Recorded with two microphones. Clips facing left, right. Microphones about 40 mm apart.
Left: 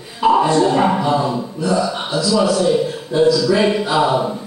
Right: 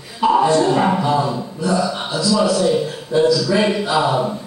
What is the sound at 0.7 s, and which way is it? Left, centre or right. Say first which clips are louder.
A man's voice: left 1 dB; centre.